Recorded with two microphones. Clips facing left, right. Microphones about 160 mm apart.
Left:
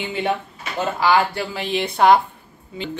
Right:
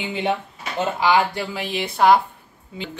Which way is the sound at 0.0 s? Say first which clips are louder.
Even; 15° right (ahead or behind).